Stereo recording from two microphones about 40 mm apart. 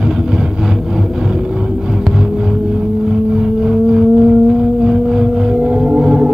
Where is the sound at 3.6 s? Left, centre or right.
Centre.